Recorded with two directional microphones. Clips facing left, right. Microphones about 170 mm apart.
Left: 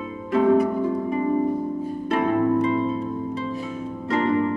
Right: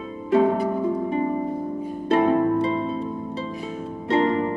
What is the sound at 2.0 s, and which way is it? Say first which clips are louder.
Harp: right 3 dB; 30° right (ahead or behind).